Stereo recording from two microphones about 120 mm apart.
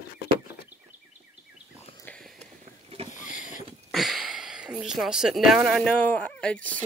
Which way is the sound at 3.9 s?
Centre (ahead or behind).